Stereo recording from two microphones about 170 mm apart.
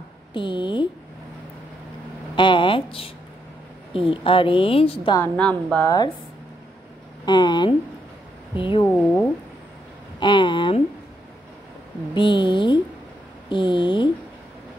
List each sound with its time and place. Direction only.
0.3 s speech: 30° left (ahead or behind)
2.3 s a woman's voice: 30° left (ahead or behind)
5.2 s a woman's voice: 5° left (ahead or behind)
7.2 s speech: 25° left (ahead or behind)
8.8 s a woman's voice: 10° left (ahead or behind)
10.2 s speech: 30° left (ahead or behind)
12.1 s speech: 30° left (ahead or behind)